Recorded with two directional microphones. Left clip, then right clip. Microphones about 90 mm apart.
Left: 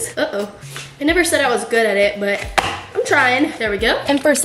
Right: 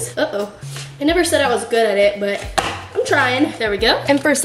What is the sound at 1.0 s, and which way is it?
Chopping, 5° right (ahead or behind).